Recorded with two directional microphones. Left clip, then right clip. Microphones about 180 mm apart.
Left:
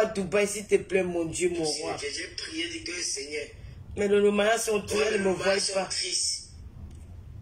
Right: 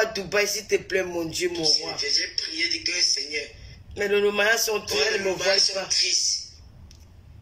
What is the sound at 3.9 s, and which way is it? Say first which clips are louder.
Speech: right 1 dB; 10° left (ahead or behind).